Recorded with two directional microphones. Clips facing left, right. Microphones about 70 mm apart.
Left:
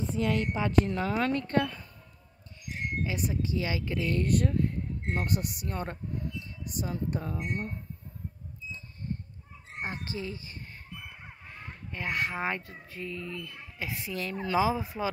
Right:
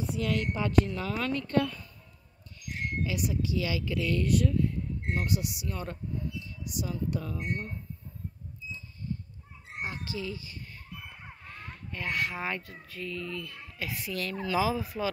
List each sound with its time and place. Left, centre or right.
0.0 s a woman's voice: left
9.8 s speech: left
11.0 s a sound: centre
12.8 s speech: left